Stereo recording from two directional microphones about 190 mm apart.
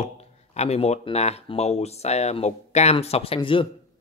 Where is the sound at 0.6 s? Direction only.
35° left (ahead or behind).